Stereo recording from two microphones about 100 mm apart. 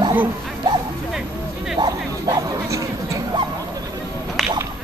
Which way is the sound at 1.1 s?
5° right (ahead or behind).